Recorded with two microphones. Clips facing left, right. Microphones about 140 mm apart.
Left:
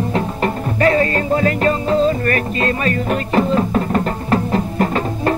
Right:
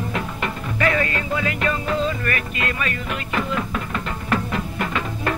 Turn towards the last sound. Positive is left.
turn(degrees=35)  # may be behind; listen again after turning